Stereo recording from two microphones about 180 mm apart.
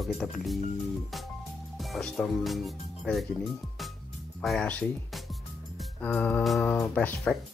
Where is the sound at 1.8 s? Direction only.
Centre (ahead or behind).